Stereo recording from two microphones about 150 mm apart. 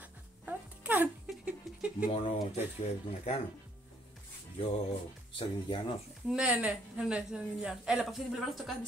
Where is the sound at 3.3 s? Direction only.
45° left (ahead or behind).